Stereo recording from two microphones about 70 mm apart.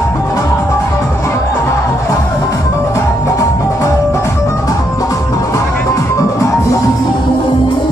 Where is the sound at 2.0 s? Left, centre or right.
Left.